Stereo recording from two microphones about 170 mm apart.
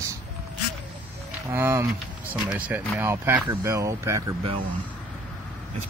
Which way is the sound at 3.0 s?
15° right (ahead or behind).